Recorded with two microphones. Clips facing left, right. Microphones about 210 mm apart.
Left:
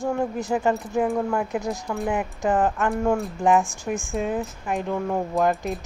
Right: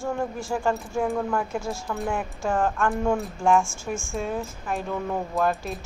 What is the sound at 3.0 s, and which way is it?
Speech, centre (ahead or behind).